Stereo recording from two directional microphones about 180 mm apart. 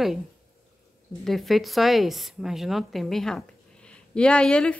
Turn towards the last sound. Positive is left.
turn(degrees=5)  # may be behind; listen again after turning